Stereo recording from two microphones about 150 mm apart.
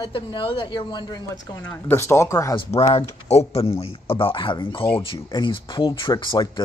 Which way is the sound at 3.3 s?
45° left (ahead or behind).